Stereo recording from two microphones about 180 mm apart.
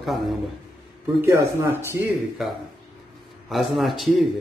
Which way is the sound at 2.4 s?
Centre (ahead or behind).